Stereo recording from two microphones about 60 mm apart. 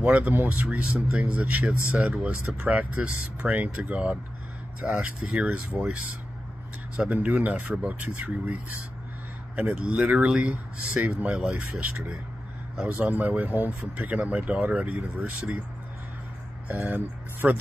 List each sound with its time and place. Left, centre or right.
0.0 s speech: right
7.0 s speech: right
9.6 s speech: centre
12.8 s speech: right
16.6 s speech: right